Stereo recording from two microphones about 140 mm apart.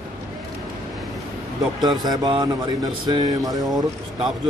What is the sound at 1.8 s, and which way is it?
Speech, 30° right (ahead or behind).